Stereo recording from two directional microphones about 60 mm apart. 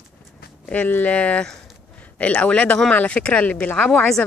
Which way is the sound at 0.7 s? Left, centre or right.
Left.